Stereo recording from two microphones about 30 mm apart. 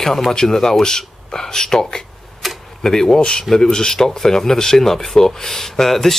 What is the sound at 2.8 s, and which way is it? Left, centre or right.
Speech, centre.